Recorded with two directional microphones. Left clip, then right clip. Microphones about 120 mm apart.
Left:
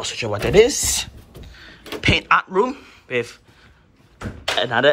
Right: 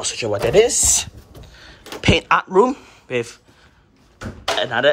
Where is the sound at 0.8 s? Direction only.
35° right (ahead or behind).